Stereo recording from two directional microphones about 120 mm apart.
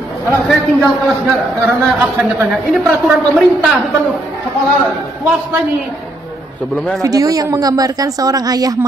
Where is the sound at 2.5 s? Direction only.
Centre (ahead or behind).